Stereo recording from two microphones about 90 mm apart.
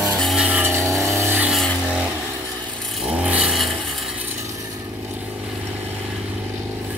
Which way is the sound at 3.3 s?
15° right (ahead or behind).